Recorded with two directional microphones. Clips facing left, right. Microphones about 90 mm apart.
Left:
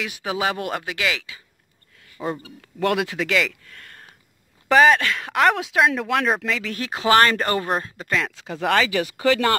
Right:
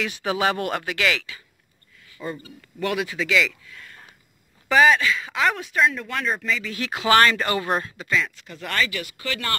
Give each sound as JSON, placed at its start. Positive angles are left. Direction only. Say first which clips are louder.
{"t": 0.0, "sound": "speech", "louder": "right 1 dB", "side_deg": 15}
{"t": 2.2, "sound": "a man's voice", "louder": "left 4 dB", "side_deg": 70}
{"t": 4.7, "sound": "speech", "louder": "left 2 dB", "side_deg": 45}
{"t": 6.8, "sound": "speech", "louder": "left 1 dB", "side_deg": 35}
{"t": 8.1, "sound": "speech", "louder": "left 1 dB", "side_deg": 80}